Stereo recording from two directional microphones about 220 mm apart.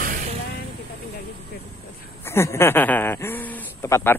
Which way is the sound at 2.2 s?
10° left (ahead or behind).